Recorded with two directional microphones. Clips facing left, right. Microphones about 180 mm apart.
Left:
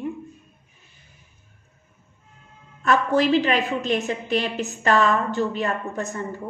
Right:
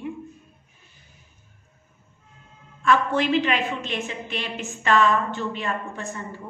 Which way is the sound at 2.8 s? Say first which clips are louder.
Left 2 dB; 40° left (ahead or behind).